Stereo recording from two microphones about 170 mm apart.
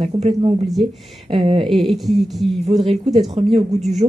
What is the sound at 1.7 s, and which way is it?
Speech, centre (ahead or behind).